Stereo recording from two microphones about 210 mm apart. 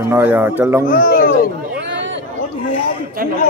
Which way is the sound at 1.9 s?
60° right (ahead or behind).